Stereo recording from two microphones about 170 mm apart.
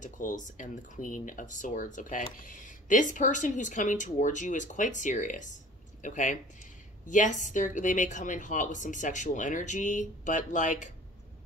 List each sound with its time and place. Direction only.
0.0 s speech: 50° left (ahead or behind)